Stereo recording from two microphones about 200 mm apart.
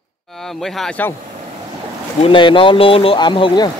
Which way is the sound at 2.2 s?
25° left (ahead or behind).